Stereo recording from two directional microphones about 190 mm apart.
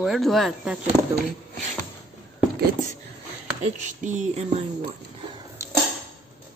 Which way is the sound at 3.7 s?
40° right (ahead or behind).